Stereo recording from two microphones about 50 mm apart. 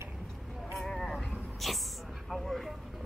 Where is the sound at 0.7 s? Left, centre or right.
Centre.